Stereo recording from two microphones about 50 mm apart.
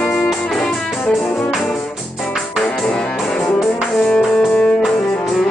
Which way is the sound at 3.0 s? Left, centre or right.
Centre.